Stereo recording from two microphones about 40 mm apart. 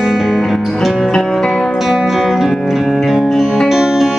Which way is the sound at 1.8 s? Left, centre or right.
Centre.